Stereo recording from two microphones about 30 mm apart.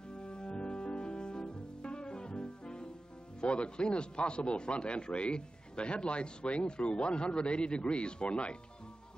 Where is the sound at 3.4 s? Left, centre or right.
Left.